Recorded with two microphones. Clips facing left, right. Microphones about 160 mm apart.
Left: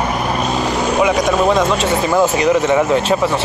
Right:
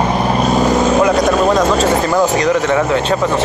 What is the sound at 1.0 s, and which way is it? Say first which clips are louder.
Vehicle: right 2 dB; centre (ahead or behind).